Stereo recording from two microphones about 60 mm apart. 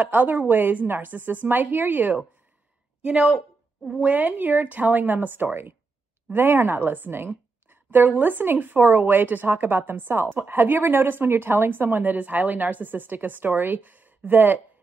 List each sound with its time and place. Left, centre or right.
0.0 s a woman's voice: right
3.0 s a woman's voice: centre
4.0 s a woman's voice: right